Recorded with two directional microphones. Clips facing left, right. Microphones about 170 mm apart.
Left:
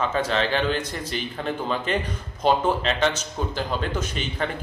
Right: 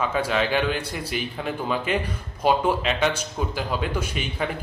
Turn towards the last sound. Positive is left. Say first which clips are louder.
# even
turn(degrees=-10)  # may be behind; listen again after turning